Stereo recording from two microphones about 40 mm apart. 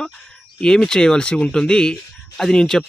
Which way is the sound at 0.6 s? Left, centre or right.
Centre.